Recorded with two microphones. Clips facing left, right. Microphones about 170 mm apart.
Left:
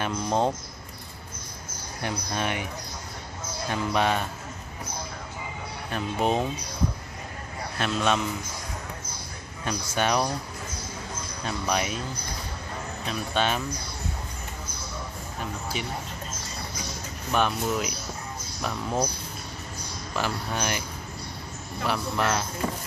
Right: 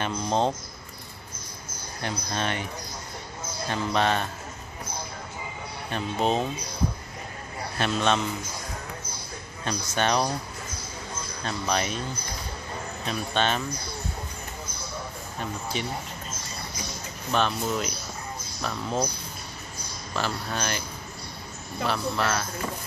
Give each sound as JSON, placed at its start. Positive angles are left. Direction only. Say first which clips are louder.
{"t": 0.0, "sound": "speech", "louder": "even", "side_deg": 10}
{"t": 2.0, "sound": "speech", "louder": "even", "side_deg": 10}
{"t": 5.9, "sound": "speech", "louder": "even", "side_deg": 10}
{"t": 7.8, "sound": "a man's voice", "louder": "right 1 dB", "side_deg": 5}
{"t": 9.7, "sound": "speech", "louder": "even", "side_deg": 10}
{"t": 11.4, "sound": "speech", "louder": "even", "side_deg": 10}
{"t": 13.3, "sound": "speech", "louder": "even", "side_deg": 10}
{"t": 17.3, "sound": "speech", "louder": "even", "side_deg": 10}
{"t": 20.2, "sound": "speech", "louder": "left 1 dB", "side_deg": 15}
{"t": 21.8, "sound": "speech", "louder": "even", "side_deg": 15}